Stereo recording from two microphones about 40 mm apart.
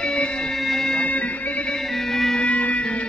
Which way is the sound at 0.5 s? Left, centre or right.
Centre.